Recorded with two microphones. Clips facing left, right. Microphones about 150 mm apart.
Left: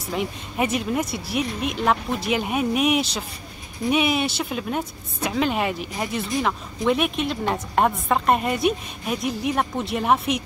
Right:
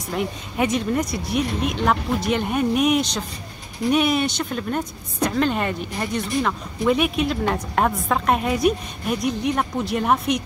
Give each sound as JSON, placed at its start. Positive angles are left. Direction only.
{"t": 0.1, "sound": "speech", "side_deg": 5}